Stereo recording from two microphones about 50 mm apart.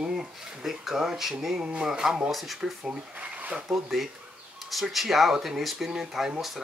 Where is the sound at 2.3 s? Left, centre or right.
Centre.